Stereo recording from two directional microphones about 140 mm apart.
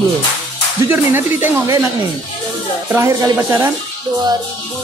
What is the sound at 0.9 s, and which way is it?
Speech, 15° right (ahead or behind).